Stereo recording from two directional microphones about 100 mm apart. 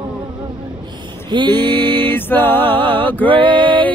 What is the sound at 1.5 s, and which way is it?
Mantra, 20° left (ahead or behind).